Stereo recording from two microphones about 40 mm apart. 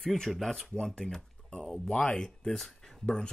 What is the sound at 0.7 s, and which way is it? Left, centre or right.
Speech, centre.